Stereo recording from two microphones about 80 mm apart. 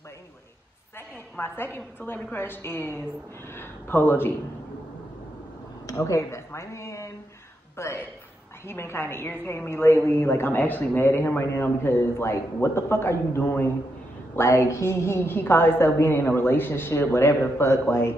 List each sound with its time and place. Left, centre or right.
1.4 s a woman's voice: left
5.9 s a sound: left
7.7 s a woman's voice: left